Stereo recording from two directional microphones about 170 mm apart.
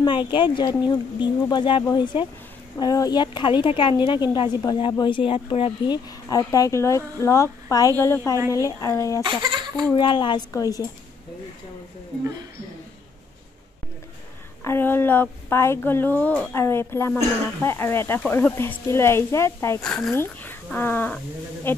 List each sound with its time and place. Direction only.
0.0 s speech: 30° left (ahead or behind)
9.2 s speech: 25° right (ahead or behind)
9.9 s speech: 30° left (ahead or behind)
14.6 s speech: 15° left (ahead or behind)
19.8 s speech: 5° left (ahead or behind)